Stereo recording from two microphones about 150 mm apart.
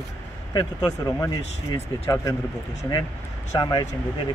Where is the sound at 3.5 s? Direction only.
25° left (ahead or behind).